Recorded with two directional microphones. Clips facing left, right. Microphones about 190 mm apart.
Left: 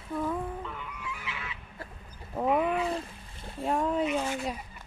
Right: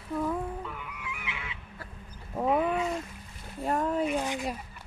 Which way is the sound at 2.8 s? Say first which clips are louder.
Even; 30° left (ahead or behind).